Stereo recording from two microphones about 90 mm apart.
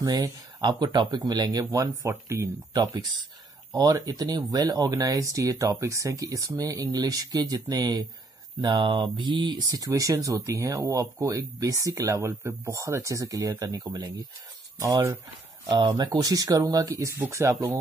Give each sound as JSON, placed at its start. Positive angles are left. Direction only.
{"t": 0.0, "sound": "speech", "side_deg": -50}
{"t": 3.9, "sound": "speech", "side_deg": -45}
{"t": 9.7, "sound": "speech", "side_deg": -40}
{"t": 15.7, "sound": "speech", "side_deg": -55}